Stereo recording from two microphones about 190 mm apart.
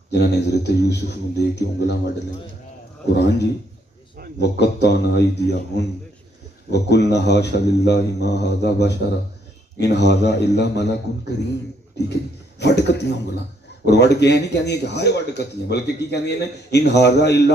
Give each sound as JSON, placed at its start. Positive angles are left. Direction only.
{"t": 0.1, "sound": "a man's voice", "side_deg": 65}
{"t": 3.2, "sound": "a man's voice", "side_deg": 60}
{"t": 12.1, "sound": "a man's voice", "side_deg": 65}